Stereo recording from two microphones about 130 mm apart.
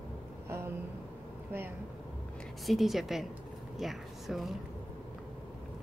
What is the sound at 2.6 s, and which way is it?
A woman's voice, centre (ahead or behind).